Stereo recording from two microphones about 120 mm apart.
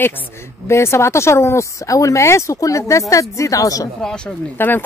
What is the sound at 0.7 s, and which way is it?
Speech, 20° left (ahead or behind).